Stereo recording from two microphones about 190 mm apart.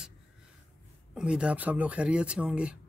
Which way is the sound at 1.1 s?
5° right (ahead or behind).